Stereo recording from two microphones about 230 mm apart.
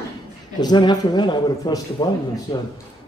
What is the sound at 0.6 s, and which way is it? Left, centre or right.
A man's voice, centre.